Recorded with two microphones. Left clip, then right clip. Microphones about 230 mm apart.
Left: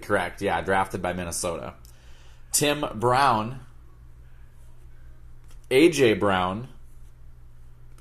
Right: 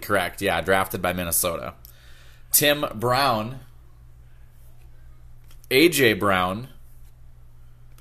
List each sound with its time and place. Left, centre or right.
0.0 s speech: right
5.7 s speech: right